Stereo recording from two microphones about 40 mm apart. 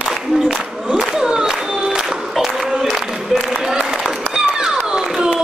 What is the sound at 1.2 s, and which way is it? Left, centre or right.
Music, centre.